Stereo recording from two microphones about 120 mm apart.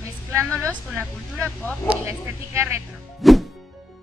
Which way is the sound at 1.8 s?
20° right (ahead or behind).